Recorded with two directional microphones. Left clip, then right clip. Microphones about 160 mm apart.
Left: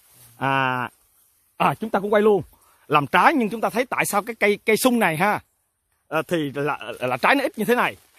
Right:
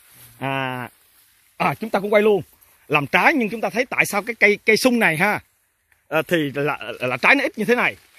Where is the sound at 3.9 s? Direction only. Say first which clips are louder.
Right 2 dB; 10° left (ahead or behind).